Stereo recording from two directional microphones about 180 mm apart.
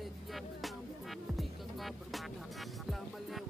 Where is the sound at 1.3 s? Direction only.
Centre (ahead or behind).